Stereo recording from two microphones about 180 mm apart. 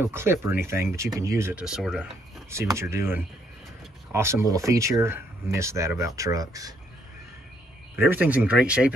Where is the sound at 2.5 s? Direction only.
15° right (ahead or behind).